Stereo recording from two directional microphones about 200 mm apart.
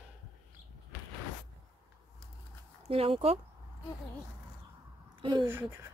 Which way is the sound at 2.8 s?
30° right (ahead or behind).